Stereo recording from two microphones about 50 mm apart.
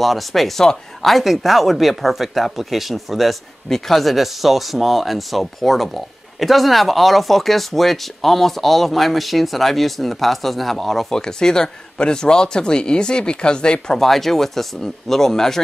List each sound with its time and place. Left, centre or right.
0.0 s speech: centre
14.0 s speech: centre